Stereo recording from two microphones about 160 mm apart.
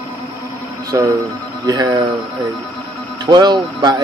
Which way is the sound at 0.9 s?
20° right (ahead or behind).